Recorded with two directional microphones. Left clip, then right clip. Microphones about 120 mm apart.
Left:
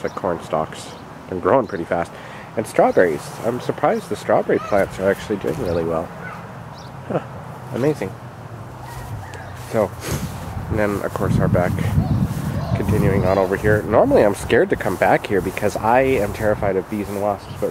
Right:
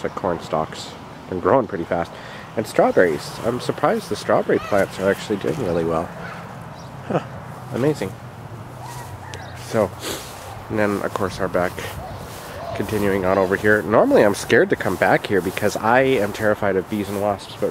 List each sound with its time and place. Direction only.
0.0 s speech: 20° right (ahead or behind)
5.7 s speech: 30° right (ahead or behind)
7.1 s speech: 40° right (ahead or behind)
7.7 s speech: 5° right (ahead or behind)
9.7 s speech: 20° right (ahead or behind)